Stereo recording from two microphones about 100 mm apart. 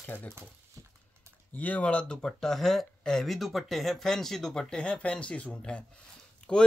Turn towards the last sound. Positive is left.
turn(degrees=5)  # may be behind; listen again after turning